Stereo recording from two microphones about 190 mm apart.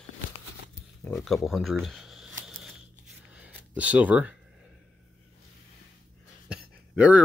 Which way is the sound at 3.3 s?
5° right (ahead or behind).